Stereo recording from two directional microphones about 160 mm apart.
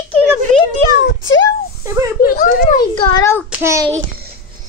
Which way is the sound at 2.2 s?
60° left (ahead or behind).